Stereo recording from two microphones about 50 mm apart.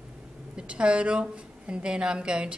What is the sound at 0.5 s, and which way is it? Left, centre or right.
A woman's voice, right.